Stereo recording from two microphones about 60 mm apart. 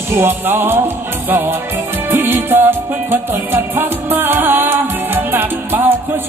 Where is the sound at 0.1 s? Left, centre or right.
Right.